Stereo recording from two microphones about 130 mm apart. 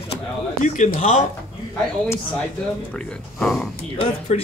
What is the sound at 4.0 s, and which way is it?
Speech, 50° left (ahead or behind).